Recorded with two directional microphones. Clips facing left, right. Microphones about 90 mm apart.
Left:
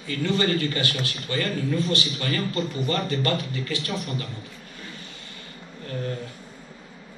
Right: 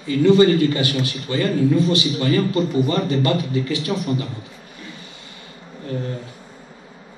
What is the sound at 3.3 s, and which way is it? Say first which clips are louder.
Speech: right 7 dB; 45° left (ahead or behind).